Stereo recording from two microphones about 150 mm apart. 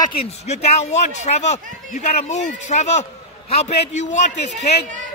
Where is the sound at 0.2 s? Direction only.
45° left (ahead or behind).